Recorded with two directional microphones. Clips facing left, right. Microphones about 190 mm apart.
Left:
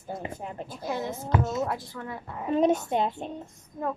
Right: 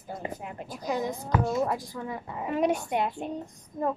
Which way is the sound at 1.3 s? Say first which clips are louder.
Even; 20° left (ahead or behind).